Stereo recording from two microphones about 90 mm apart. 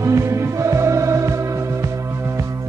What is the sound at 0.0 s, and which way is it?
Music, 35° right (ahead or behind).